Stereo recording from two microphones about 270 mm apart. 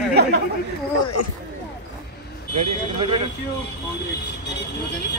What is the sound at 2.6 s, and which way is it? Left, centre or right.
Speech, right.